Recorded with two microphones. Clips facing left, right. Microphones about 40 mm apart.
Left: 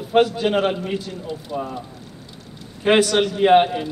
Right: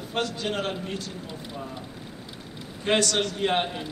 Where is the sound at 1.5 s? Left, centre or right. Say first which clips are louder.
Left 12 dB; left.